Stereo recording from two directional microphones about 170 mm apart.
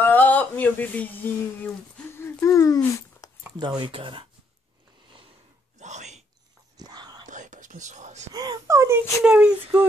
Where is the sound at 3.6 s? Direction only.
25° right (ahead or behind).